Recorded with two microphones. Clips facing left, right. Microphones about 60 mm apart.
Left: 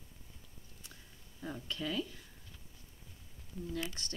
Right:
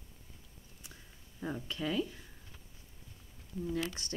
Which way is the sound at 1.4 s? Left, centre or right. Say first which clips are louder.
Right 3 dB; right.